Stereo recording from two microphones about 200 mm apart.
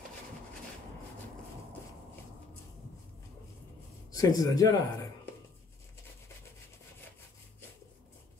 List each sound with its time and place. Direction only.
4.1 s speech: 15° left (ahead or behind)